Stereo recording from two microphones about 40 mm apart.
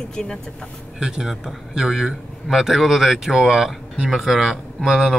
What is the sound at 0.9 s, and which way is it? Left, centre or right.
Speech, centre.